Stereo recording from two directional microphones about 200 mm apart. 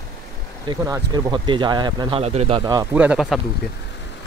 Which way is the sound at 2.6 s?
20° right (ahead or behind).